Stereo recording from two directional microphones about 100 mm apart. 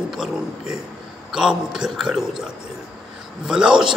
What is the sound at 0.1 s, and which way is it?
A man's voice, 5° right (ahead or behind).